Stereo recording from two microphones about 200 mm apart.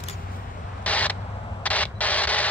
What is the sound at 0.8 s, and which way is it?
Camera, 5° left (ahead or behind).